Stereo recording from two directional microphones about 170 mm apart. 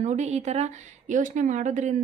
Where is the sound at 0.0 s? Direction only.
45° right (ahead or behind).